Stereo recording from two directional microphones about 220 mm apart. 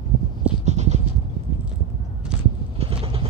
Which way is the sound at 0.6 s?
30° right (ahead or behind).